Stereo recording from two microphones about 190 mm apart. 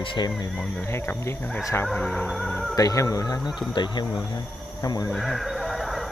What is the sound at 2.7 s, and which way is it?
Speech, 20° left (ahead or behind).